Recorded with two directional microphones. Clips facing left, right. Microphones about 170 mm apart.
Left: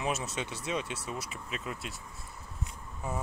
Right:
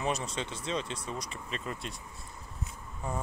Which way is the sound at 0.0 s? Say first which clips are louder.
Right 1 dB; 5° left (ahead or behind).